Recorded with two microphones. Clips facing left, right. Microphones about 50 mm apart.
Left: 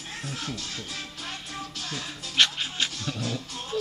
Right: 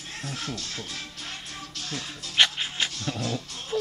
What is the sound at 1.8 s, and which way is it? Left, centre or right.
Music, centre.